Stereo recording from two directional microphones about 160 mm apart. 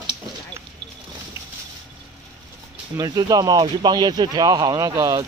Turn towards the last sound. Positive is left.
turn(degrees=-20)  # may be behind; listen again after turning